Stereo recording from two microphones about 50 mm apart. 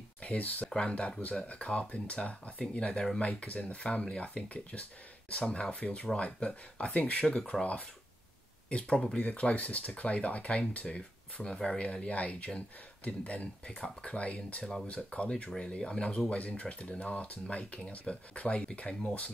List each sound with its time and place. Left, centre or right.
0.2 s speech: left
8.6 s speech: left
11.4 s speech: centre